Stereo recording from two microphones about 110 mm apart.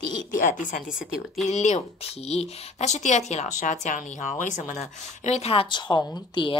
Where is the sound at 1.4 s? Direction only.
90° left; by 5.7 s 60° left (ahead or behind).